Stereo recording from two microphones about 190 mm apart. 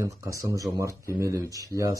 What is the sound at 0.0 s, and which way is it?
Speech, 15° right (ahead or behind).